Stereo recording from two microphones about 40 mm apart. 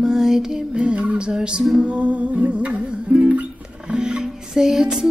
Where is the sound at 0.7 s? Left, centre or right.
Right.